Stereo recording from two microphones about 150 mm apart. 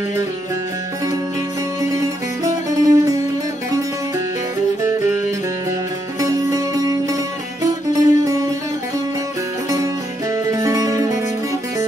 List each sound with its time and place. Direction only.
1.8 s music: 20° right (ahead or behind)
6.2 s music: 20° right (ahead or behind)
10.5 s music: 20° right (ahead or behind)